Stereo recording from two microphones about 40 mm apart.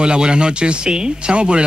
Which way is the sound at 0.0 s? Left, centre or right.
Right.